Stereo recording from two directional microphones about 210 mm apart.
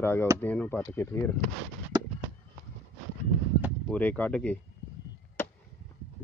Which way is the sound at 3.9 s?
10° left (ahead or behind).